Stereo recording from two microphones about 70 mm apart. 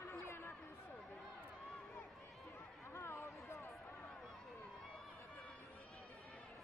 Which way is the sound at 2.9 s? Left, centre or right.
Left.